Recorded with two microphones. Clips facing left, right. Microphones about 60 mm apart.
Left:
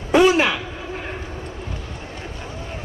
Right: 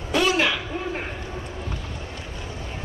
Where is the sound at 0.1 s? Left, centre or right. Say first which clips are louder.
Left 6 dB; left.